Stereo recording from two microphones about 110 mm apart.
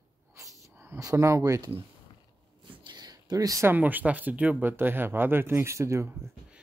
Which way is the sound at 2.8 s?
40° right (ahead or behind).